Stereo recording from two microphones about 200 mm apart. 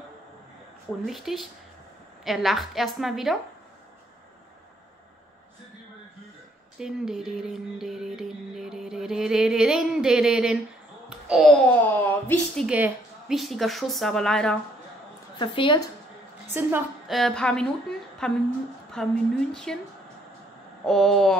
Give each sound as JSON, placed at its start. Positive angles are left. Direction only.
{"t": 1.0, "sound": "speech", "side_deg": 0}
{"t": 6.8, "sound": "speech", "side_deg": 0}
{"t": 11.1, "sound": "a sound", "side_deg": -5}
{"t": 11.5, "sound": "a woman's voice", "side_deg": 5}
{"t": 12.6, "sound": "speech", "side_deg": -5}
{"t": 15.3, "sound": "a woman's voice", "side_deg": 25}
{"t": 16.6, "sound": "a woman's voice", "side_deg": -10}
{"t": 17.1, "sound": "speech", "side_deg": 0}
{"t": 20.8, "sound": "speech", "side_deg": 0}